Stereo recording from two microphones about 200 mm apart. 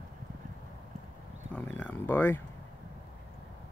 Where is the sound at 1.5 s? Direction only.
10° left (ahead or behind).